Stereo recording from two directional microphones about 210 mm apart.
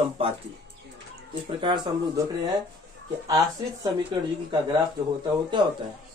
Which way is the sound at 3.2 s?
20° right (ahead or behind).